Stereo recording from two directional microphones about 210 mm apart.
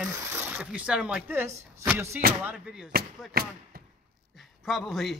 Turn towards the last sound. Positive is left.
turn(degrees=0)  # may be behind; listen again after turning